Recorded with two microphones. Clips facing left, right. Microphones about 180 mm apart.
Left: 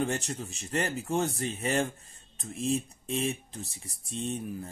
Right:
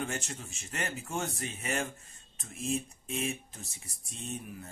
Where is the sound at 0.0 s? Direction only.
35° left (ahead or behind).